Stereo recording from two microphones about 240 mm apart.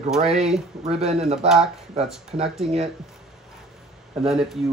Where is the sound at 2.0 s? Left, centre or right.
Centre.